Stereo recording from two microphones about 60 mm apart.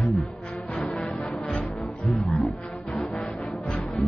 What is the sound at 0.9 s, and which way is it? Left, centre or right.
Music, centre.